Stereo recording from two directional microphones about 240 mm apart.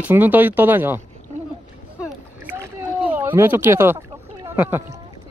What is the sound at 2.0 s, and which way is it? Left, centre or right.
Rowboat, centre.